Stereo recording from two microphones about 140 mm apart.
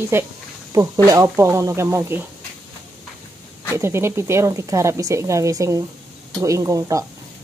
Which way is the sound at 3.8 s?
20° right (ahead or behind).